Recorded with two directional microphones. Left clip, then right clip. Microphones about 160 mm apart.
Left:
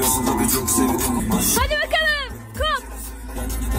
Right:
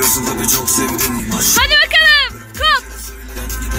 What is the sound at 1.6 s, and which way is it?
Speech, 25° left (ahead or behind).